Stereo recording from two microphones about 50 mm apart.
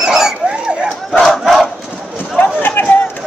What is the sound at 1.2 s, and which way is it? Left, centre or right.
Battle cry, centre.